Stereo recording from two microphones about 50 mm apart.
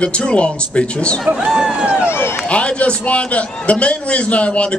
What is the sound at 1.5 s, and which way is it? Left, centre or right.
Speech, centre.